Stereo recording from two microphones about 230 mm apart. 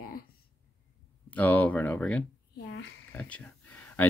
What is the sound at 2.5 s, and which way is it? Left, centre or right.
Speech, left.